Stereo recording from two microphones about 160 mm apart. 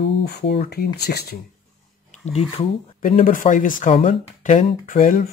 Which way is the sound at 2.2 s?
45° left (ahead or behind).